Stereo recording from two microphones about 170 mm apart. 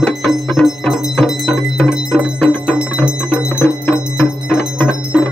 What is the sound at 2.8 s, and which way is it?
Music, 5° right (ahead or behind).